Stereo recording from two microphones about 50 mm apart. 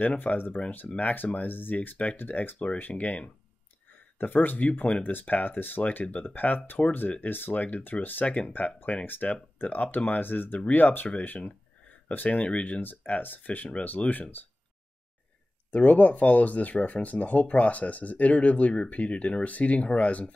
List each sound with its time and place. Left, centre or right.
0.0 s speech: left
8.3 s speech: left
12.8 s speech: left
15.7 s speech: left